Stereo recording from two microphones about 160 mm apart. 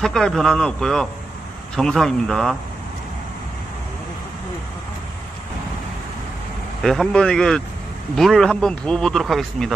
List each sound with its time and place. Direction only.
0.0 s speech: centre (ahead or behind)
6.8 s speech: 5° left (ahead or behind)